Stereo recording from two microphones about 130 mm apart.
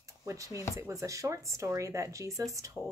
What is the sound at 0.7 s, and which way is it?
Speech, 25° right (ahead or behind).